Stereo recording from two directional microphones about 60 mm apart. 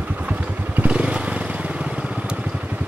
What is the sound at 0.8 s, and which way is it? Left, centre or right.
Motorcycle, right.